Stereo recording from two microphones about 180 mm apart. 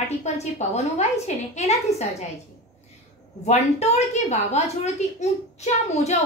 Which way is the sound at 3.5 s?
35° left (ahead or behind).